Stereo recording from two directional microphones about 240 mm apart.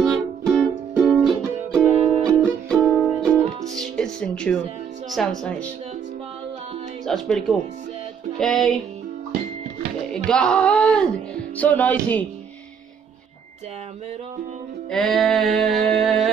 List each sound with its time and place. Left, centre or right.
0.0 s music: centre
5.1 s speech: centre
7.1 s speech: centre
10.2 s speech: centre
11.5 s music: centre
14.9 s music: centre